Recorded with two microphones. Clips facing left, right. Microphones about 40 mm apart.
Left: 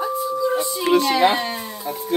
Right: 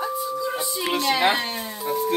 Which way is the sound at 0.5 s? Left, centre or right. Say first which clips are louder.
Left 7 dB; centre.